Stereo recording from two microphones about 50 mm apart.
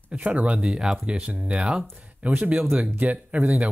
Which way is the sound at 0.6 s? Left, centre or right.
Centre.